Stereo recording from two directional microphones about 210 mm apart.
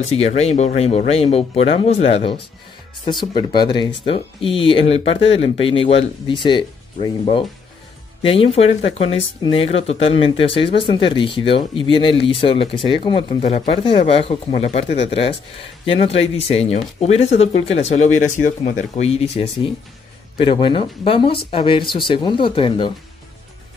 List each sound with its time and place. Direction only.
0.0 s speech: 30° left (ahead or behind)